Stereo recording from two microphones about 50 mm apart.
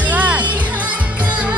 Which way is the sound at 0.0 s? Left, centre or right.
Right.